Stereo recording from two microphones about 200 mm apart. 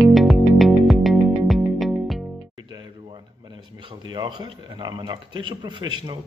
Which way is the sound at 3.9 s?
20° right (ahead or behind).